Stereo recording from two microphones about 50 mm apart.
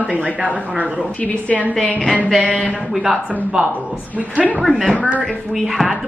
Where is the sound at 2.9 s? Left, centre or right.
Centre.